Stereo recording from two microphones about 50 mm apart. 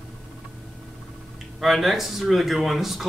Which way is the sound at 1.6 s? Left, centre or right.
Centre.